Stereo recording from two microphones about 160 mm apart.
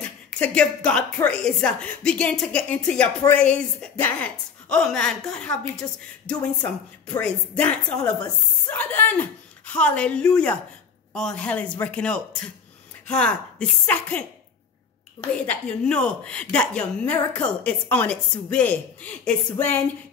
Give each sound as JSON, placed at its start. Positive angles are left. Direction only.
{"t": 0.0, "sound": "a woman's voice", "side_deg": 5}
{"t": 5.8, "sound": "speech", "side_deg": 25}
{"t": 7.2, "sound": "a woman's voice", "side_deg": 5}
{"t": 15.4, "sound": "a woman's voice", "side_deg": 5}